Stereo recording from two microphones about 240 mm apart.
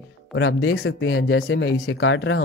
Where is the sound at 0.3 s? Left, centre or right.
Left.